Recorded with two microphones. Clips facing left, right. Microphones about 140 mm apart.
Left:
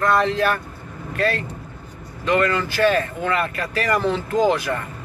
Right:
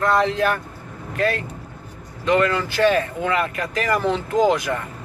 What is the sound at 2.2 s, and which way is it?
Speech, 15° right (ahead or behind).